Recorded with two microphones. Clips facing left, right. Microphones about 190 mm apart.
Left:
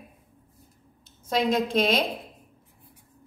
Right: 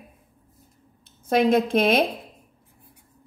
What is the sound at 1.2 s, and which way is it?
Speech, 55° right (ahead or behind).